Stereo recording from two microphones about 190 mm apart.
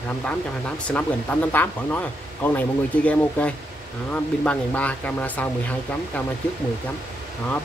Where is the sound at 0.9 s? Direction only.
10° left (ahead or behind).